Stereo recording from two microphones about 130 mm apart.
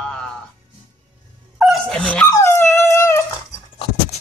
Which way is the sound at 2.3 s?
20° left (ahead or behind).